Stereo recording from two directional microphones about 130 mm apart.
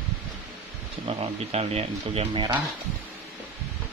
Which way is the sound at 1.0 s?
50° right (ahead or behind).